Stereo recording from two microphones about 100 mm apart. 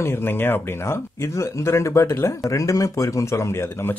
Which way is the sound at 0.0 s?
25° left (ahead or behind).